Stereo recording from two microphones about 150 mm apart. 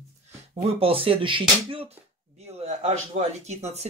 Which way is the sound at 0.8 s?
40° right (ahead or behind).